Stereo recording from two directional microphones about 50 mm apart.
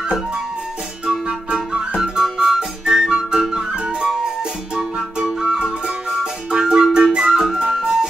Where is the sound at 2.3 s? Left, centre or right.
Centre.